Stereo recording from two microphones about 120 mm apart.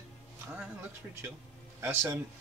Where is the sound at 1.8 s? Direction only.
20° right (ahead or behind).